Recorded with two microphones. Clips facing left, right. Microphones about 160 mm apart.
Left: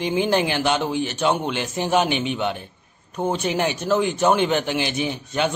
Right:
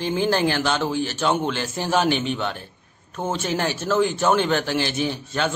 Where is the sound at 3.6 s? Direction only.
15° left (ahead or behind).